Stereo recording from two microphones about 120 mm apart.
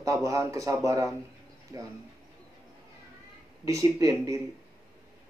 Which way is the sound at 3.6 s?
25° right (ahead or behind).